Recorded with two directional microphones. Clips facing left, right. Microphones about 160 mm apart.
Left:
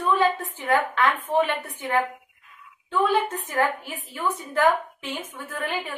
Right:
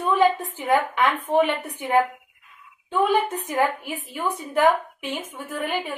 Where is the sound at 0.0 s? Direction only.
15° right (ahead or behind).